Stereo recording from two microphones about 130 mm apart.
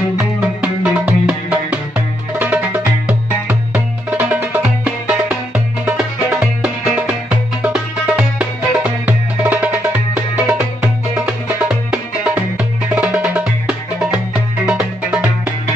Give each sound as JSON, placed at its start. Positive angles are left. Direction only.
{"t": 0.2, "sound": "music", "side_deg": -10}